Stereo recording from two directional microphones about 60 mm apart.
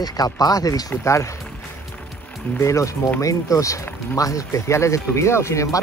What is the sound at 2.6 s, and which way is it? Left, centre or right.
Speech, left.